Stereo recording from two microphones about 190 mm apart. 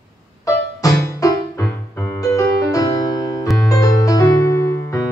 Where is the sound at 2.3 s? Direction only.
20° left (ahead or behind).